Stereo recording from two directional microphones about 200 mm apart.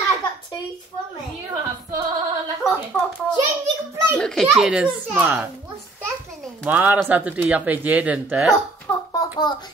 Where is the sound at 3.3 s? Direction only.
20° right (ahead or behind).